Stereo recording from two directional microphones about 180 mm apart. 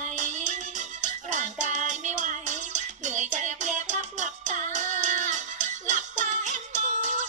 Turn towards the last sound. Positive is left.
turn(degrees=-40)  # may be behind; listen again after turning